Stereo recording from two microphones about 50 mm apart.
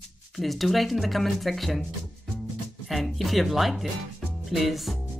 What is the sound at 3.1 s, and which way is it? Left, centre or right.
Speech, centre.